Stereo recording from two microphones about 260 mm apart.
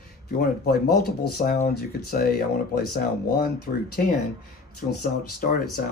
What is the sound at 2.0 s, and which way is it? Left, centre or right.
Speech, left.